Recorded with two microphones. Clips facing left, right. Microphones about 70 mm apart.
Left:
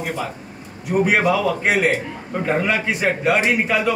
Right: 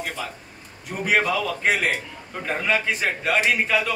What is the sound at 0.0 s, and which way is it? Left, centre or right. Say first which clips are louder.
A man's voice: left 5 dB; centre.